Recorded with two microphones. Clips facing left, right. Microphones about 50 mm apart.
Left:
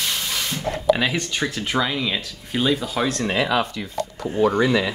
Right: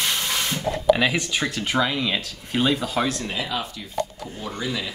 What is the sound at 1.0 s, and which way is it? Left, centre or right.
Speech, centre.